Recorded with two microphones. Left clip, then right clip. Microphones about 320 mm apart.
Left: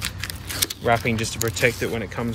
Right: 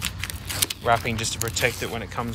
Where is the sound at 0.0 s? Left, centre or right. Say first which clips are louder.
Left 1 dB; centre.